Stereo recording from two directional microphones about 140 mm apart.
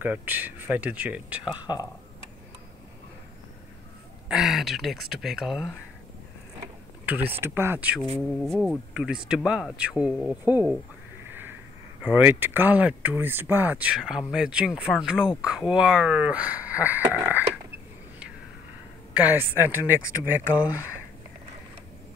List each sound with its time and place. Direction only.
0.0 s speech: 10° right (ahead or behind)
1.6 s speech: 30° left (ahead or behind)
4.3 s speech: centre (ahead or behind)
7.1 s speech: 15° right (ahead or behind)
8.4 s speech: centre (ahead or behind)
11.2 s a sound: 15° right (ahead or behind)
12.0 s speech: 10° right (ahead or behind)
19.1 s speech: 15° right (ahead or behind)